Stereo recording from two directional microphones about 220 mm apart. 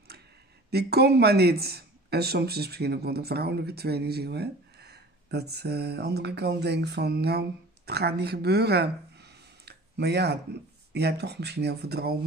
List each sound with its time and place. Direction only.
0.7 s speech: 45° right (ahead or behind)